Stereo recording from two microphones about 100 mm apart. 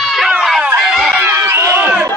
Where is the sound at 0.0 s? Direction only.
Centre (ahead or behind).